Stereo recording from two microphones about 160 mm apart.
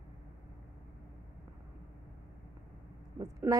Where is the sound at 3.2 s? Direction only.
20° right (ahead or behind).